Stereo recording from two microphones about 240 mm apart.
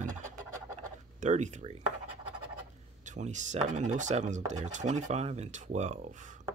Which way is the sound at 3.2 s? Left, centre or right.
Right.